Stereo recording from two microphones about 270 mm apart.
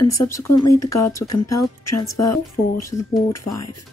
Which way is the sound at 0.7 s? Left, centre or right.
Left.